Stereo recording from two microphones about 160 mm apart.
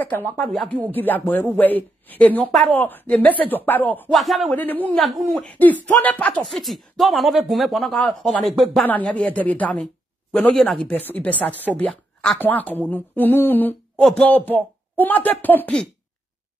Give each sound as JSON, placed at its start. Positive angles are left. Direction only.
{"t": 0.0, "sound": "speech", "side_deg": 10}
{"t": 4.1, "sound": "speech", "side_deg": 0}
{"t": 4.5, "sound": "speech", "side_deg": 10}
{"t": 5.0, "sound": "speech", "side_deg": 0}